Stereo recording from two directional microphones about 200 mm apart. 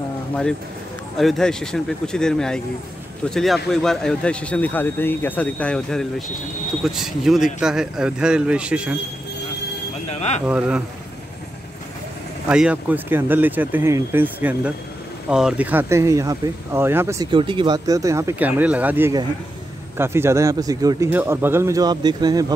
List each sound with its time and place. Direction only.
1.1 s speech: centre (ahead or behind)
10.0 s a sound: 35° left (ahead or behind)
10.4 s speech: 5° right (ahead or behind)
12.4 s speech: 5° right (ahead or behind)